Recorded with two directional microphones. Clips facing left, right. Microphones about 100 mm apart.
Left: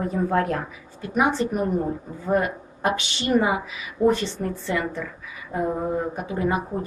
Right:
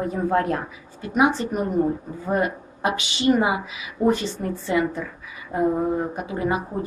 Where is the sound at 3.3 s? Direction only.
20° right (ahead or behind).